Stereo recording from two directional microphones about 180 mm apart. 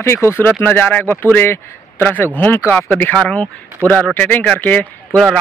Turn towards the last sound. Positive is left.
turn(degrees=5)  # may be behind; listen again after turning